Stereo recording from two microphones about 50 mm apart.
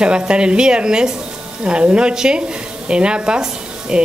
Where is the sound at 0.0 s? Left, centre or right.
Centre.